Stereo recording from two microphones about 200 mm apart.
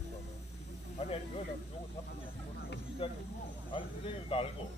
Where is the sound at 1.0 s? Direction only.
30° left (ahead or behind).